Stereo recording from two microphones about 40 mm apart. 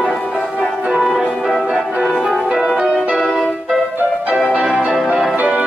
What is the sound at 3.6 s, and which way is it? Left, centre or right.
Music, centre.